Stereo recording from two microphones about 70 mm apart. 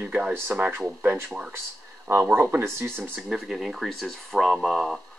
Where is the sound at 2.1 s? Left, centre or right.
Right.